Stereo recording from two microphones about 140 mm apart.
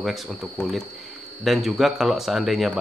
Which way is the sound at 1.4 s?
Centre (ahead or behind).